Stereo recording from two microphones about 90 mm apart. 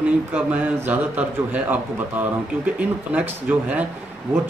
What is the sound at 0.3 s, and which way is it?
Speech, 15° right (ahead or behind).